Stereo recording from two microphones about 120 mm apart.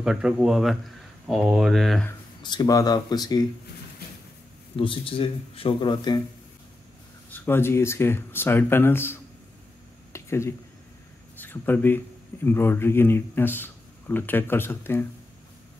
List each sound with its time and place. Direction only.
0.0 s speech: 5° right (ahead or behind)
2.4 s speech: 35° left (ahead or behind)
4.7 s speech: 50° left (ahead or behind)
7.3 s speech: 20° left (ahead or behind)
10.1 s a sound: 20° left (ahead or behind)
11.4 s speech: 15° left (ahead or behind)